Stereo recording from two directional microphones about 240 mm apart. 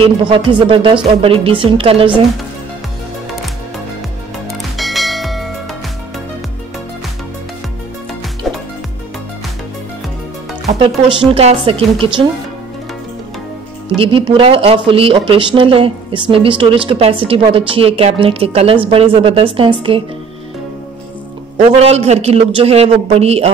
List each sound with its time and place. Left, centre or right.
0.0 s speech: right
4.5 s music: centre
8.5 s music: centre
10.9 s speech: centre
11.3 s speech: right
13.8 s speech: right
21.5 s speech: right